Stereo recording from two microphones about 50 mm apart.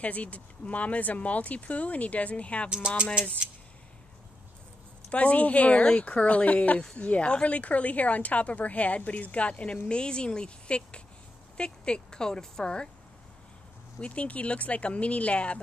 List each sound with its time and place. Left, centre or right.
0.0 s speech: left
3.2 s speech: right
5.1 s speech: left
13.9 s speech: left